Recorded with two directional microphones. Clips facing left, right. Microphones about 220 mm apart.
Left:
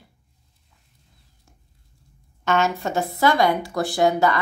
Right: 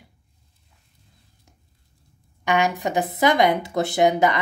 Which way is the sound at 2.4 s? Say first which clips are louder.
Even; 15° right (ahead or behind).